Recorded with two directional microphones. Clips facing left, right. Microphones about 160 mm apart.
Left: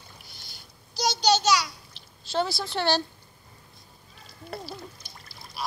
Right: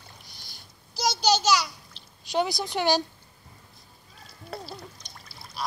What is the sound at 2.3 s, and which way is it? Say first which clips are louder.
Speech: right 1 dB; 15° right (ahead or behind).